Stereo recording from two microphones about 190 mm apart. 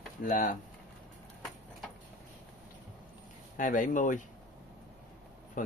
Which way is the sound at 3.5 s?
40° left (ahead or behind).